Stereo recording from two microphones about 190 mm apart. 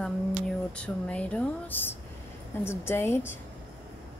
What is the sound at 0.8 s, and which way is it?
Speech, 5° left (ahead or behind).